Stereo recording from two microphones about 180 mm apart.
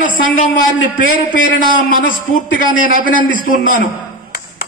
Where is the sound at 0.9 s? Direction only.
50° left (ahead or behind).